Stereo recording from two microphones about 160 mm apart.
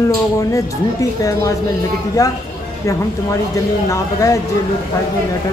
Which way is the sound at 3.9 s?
20° left (ahead or behind).